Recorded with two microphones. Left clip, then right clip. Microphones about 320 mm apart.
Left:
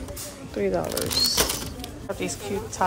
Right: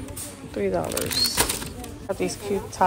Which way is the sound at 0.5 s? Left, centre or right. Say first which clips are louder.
Even; centre.